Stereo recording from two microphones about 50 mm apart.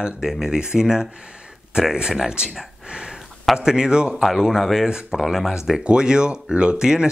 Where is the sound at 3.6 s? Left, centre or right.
Centre.